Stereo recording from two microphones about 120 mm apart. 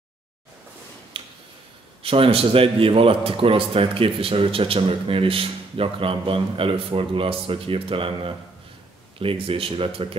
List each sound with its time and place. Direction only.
1.1 s tick-tock: 50° right (ahead or behind)
2.0 s a man's voice: 50° right (ahead or behind)